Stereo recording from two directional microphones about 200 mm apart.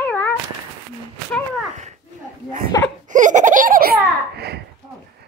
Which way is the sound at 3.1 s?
40° right (ahead or behind).